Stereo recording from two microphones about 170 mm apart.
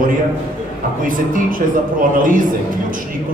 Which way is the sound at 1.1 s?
55° right (ahead or behind).